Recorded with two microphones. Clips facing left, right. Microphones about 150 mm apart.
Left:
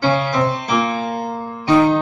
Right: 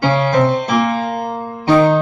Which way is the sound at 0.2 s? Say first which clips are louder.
Right 5 dB; 55° right (ahead or behind).